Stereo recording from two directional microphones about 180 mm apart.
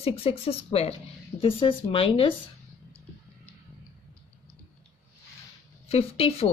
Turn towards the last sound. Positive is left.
turn(degrees=35)  # may be behind; listen again after turning